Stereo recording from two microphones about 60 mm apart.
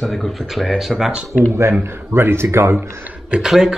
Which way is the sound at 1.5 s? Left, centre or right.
Right.